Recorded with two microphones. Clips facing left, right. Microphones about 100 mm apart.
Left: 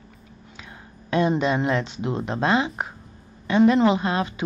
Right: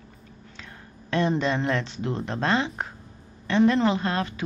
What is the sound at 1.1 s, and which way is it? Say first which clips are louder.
Speech: left 3 dB; 15° left (ahead or behind).